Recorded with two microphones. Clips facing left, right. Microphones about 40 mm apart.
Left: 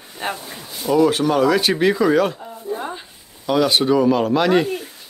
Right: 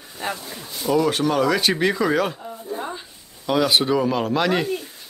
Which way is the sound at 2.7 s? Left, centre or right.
Left.